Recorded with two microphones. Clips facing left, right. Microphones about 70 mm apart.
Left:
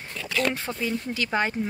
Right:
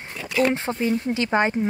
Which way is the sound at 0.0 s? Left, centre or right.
Right.